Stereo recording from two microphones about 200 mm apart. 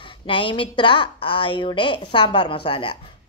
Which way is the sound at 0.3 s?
25° left (ahead or behind).